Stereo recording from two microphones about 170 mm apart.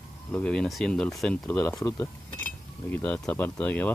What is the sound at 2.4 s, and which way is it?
Cutlery, 10° left (ahead or behind).